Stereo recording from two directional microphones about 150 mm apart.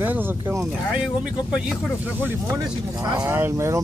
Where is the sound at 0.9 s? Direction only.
5° right (ahead or behind).